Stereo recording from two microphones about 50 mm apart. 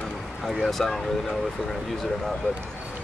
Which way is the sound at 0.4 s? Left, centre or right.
Centre.